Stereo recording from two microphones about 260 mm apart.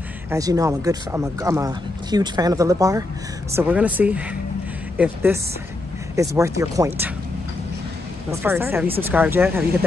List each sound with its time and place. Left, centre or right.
0.3 s speech: centre
8.3 s speech: centre